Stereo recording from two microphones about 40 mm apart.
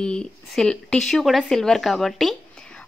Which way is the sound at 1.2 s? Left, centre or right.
Centre.